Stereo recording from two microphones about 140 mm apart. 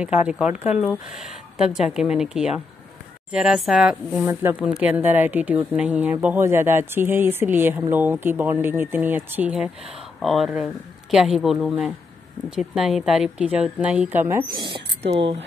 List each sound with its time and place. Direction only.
0.0 s speech: 10° right (ahead or behind)
0.5 s speech: 55° left (ahead or behind)
0.8 s speech: centre (ahead or behind)
4.3 s speech: 15° right (ahead or behind)
15.0 s speech: 45° right (ahead or behind)